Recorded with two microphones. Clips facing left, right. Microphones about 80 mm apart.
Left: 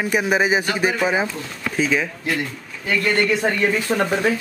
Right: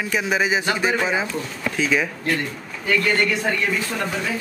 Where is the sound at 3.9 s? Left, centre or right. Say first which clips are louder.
Left 6 dB; left.